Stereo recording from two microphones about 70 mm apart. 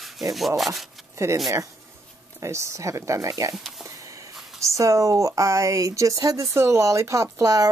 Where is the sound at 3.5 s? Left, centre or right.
Centre.